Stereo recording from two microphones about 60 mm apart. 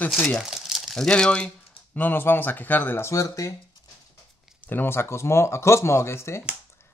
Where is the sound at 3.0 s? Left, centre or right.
Left.